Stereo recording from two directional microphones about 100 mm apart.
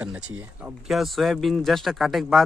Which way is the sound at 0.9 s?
Centre (ahead or behind).